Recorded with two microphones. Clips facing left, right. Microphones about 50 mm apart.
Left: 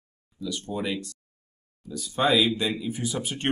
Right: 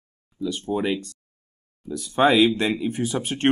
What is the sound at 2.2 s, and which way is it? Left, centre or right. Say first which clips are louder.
Speech: right 6 dB; right.